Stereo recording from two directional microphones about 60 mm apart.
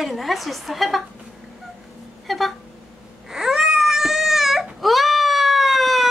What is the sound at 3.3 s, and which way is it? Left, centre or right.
Baby cry, centre.